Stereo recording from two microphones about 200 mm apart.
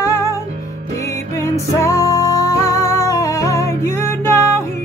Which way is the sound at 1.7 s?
15° left (ahead or behind).